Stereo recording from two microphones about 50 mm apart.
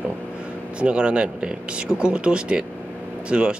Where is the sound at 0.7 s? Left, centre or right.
Right.